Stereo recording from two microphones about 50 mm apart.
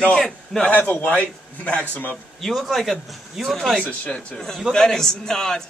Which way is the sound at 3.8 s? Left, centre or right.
Left.